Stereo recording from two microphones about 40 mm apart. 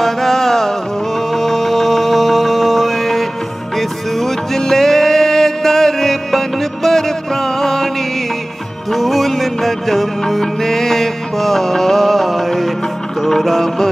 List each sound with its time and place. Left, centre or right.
0.0 s music: centre
8.9 s music: centre